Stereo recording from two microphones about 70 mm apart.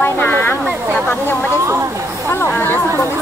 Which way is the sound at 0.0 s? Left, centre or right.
Left.